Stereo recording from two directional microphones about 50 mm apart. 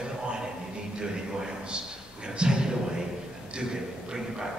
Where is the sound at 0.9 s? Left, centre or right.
Centre.